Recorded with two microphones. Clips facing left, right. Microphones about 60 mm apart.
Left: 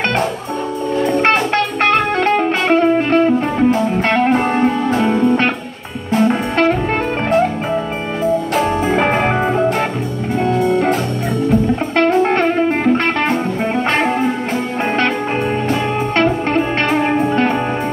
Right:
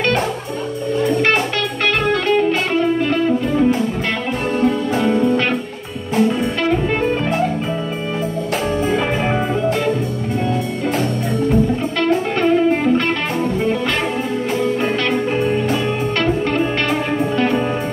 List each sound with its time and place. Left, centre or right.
1.2 s music: left
8.9 s music: left
12.0 s music: left
16.2 s music: left